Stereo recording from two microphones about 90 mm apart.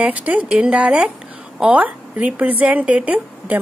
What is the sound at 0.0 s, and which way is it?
A woman's voice, 15° right (ahead or behind).